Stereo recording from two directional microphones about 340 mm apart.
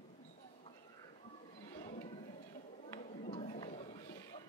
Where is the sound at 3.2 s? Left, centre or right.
Left.